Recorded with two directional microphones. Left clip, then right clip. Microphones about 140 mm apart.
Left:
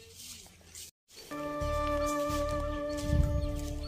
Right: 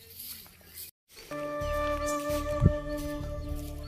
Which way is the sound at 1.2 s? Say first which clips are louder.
Right 2 dB; 5° right (ahead or behind).